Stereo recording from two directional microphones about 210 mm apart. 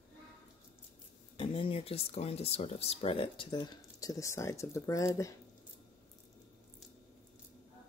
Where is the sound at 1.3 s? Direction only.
25° left (ahead or behind).